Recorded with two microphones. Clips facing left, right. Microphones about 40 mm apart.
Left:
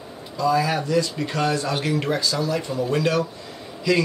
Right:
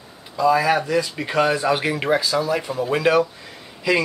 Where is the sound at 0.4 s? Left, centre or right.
Centre.